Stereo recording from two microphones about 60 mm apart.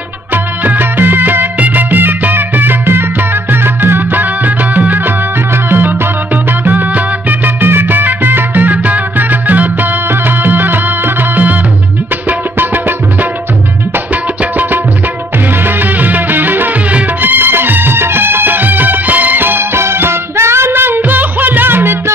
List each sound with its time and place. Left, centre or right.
0.3 s music: right
12.3 s music: right
14.4 s music: right